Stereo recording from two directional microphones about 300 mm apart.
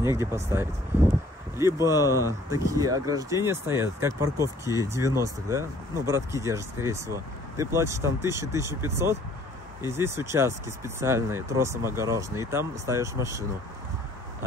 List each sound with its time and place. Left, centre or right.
0.2 s speech: centre